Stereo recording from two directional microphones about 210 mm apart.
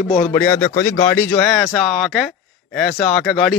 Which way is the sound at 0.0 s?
35° left (ahead or behind).